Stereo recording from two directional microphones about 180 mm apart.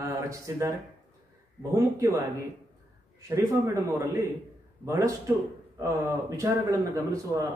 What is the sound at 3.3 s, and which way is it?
Speech, 15° right (ahead or behind).